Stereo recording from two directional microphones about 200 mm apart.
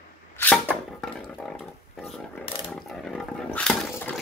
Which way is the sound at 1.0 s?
Centre (ahead or behind).